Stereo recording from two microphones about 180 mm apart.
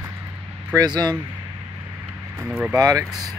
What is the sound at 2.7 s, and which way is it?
Speech, 20° right (ahead or behind).